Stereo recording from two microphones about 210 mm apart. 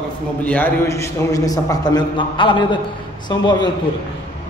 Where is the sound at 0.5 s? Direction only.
10° left (ahead or behind).